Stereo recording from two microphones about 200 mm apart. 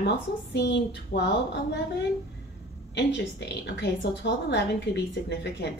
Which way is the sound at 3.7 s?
60° left (ahead or behind).